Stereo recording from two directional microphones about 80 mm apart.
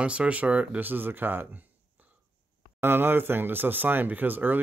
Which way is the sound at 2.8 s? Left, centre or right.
Right.